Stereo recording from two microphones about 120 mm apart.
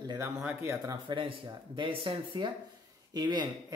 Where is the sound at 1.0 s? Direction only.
45° right (ahead or behind).